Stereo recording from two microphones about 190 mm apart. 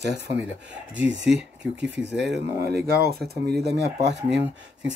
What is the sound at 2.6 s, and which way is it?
Speech, 55° right (ahead or behind).